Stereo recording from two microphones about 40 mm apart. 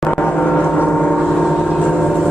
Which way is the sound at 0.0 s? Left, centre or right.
Left.